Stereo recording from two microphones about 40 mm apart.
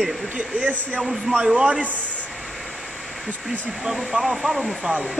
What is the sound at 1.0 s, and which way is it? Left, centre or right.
Speech, centre.